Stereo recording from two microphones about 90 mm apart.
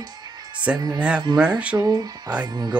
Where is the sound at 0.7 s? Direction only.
50° right (ahead or behind).